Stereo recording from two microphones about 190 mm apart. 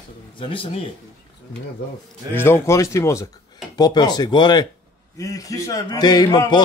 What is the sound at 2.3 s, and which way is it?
Coin, 10° left (ahead or behind).